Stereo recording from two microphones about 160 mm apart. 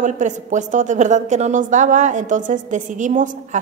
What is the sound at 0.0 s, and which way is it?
A woman's voice, 50° right (ahead or behind).